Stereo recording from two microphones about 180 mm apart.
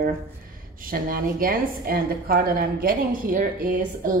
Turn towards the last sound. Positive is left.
turn(degrees=-50)  # may be behind; listen again after turning